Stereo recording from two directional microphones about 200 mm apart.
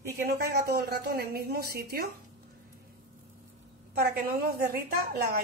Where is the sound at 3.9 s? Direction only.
50° right (ahead or behind).